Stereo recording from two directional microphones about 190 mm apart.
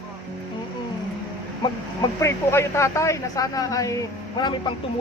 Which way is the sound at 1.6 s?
20° left (ahead or behind).